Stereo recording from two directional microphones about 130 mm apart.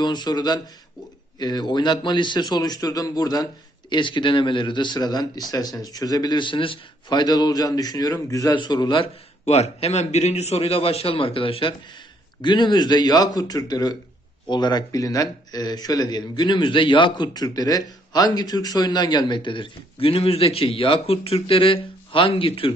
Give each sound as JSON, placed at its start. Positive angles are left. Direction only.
{"t": 0.0, "sound": "a man's voice", "side_deg": 35}
{"t": 9.5, "sound": "a man's voice", "side_deg": 55}